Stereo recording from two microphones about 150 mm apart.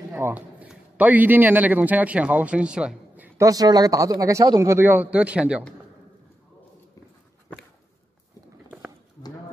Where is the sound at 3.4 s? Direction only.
25° right (ahead or behind); by 5.6 s 10° right (ahead or behind).